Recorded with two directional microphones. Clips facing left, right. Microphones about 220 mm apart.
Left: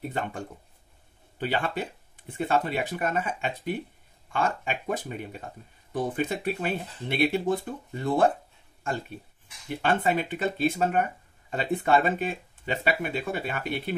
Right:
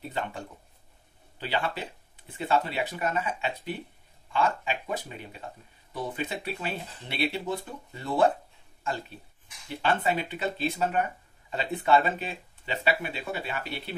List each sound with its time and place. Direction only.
1.4 s speech: 50° left (ahead or behind)
9.8 s speech: 50° left (ahead or behind)